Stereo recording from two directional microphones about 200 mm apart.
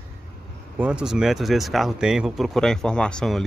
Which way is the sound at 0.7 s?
5° right (ahead or behind).